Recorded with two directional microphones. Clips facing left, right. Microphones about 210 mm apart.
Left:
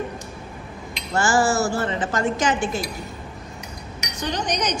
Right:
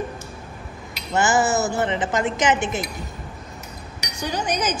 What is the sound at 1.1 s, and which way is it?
Speech, 20° right (ahead or behind).